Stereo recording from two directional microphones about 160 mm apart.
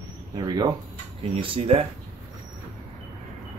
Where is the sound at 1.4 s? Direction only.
35° right (ahead or behind).